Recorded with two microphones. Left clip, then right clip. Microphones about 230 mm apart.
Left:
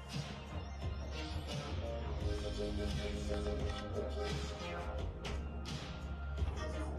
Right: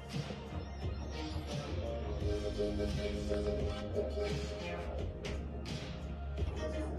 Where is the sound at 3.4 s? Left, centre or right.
Left.